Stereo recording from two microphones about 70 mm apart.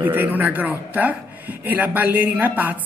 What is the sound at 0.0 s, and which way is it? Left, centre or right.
A woman's voice, right.